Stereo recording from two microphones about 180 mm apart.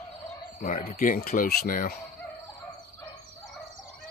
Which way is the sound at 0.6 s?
40° left (ahead or behind).